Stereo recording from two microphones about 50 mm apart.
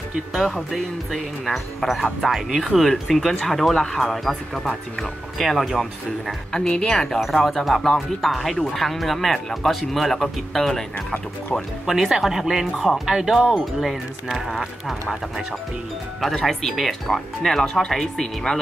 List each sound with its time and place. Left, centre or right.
0.4 s a woman's voice: centre
6.5 s a woman's voice: centre
7.0 s speech: centre
11.8 s speech: centre